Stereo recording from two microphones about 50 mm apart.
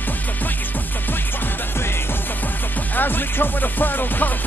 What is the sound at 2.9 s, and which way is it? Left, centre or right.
Music, left.